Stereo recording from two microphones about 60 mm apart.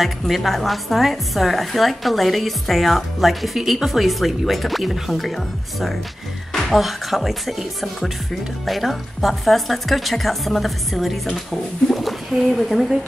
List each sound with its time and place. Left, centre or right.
0.0 s a woman's voice: centre